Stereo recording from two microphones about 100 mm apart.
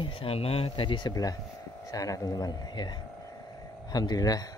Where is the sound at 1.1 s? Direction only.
35° left (ahead or behind).